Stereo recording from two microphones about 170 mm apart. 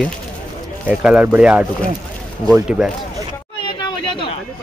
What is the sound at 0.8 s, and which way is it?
Speech, 10° right (ahead or behind).